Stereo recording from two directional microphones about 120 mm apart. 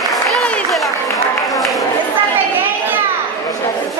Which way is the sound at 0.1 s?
Centre (ahead or behind).